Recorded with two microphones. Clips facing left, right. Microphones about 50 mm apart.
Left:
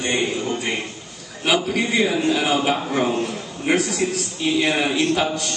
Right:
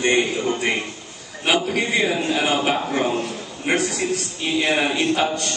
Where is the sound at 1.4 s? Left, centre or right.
Centre.